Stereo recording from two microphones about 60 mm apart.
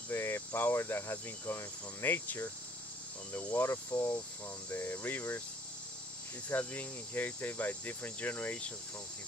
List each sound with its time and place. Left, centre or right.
0.1 s cricket: left
3.5 s speech: left
4.6 s cricket: left
6.5 s speech: left